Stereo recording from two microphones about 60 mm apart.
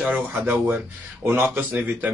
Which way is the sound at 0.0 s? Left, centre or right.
Right.